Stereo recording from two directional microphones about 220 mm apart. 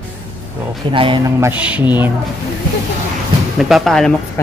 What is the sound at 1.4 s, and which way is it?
Speech, 10° right (ahead or behind).